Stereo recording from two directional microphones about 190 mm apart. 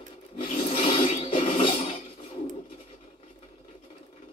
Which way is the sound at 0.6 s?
30° left (ahead or behind).